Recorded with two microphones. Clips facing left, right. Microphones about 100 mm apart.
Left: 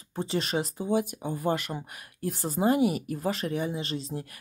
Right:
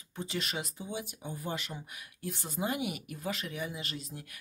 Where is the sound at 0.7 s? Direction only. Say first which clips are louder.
Left 12 dB; 50° left (ahead or behind); by 4.4 s 35° left (ahead or behind).